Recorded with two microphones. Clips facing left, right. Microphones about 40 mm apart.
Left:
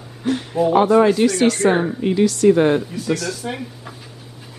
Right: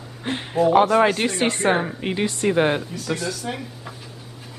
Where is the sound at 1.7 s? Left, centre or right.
Centre.